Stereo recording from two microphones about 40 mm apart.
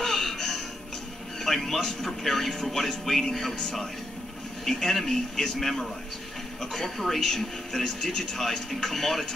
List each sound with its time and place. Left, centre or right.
0.0 s music: centre
1.4 s speech: centre
8.1 s speech: centre
8.4 s speech: centre